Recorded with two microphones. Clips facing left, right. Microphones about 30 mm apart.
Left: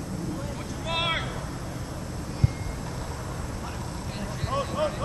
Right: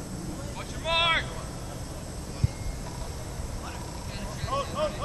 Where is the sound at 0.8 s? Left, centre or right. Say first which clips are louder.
Right 3 dB; centre.